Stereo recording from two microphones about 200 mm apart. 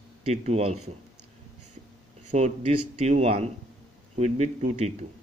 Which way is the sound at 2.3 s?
30° right (ahead or behind).